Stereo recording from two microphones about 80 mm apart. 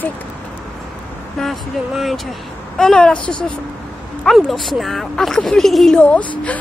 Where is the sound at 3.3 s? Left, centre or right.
Left.